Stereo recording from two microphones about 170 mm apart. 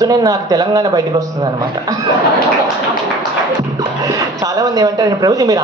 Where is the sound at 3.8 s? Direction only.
20° right (ahead or behind).